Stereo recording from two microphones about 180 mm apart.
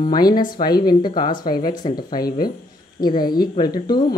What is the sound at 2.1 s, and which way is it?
Speech, 55° left (ahead or behind).